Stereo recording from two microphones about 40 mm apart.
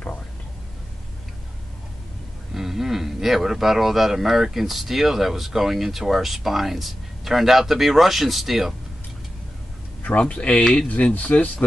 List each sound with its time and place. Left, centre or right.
2.5 s speech: centre
10.1 s speech: left